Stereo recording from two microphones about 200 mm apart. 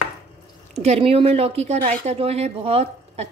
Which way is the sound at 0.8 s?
30° right (ahead or behind).